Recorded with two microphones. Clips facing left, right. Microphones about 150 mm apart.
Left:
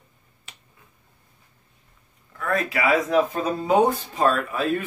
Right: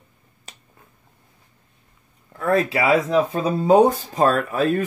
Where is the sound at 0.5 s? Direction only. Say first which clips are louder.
Right 4 dB; 40° right (ahead or behind).